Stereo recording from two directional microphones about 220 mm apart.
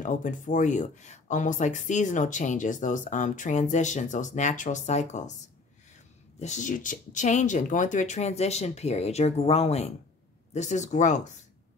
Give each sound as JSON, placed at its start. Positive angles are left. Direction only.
{"t": 0.0, "sound": "speech", "side_deg": 35}
{"t": 6.4, "sound": "speech", "side_deg": 35}